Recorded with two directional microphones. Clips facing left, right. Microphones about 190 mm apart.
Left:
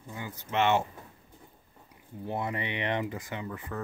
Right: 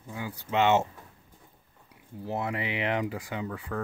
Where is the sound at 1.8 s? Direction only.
5° right (ahead or behind).